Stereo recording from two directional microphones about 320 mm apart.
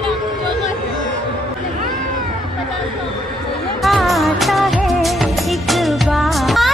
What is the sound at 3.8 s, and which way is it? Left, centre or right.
Music, centre.